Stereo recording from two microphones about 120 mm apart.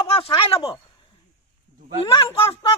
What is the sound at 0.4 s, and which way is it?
Speech, 50° left (ahead or behind).